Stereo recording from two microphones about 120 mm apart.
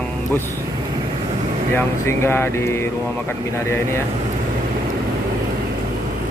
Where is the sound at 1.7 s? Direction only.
20° left (ahead or behind).